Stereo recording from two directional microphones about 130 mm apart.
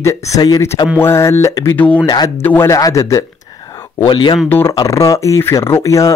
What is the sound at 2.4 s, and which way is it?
Speech, 15° left (ahead or behind).